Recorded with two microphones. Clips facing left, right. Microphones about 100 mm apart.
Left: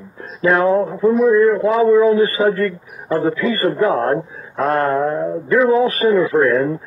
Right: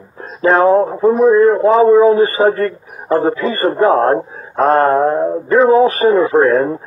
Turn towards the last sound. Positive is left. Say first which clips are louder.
# right 3 dB
turn(degrees=-30)  # may be behind; listen again after turning